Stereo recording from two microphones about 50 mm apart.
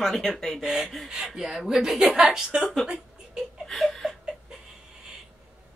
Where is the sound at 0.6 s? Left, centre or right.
Centre.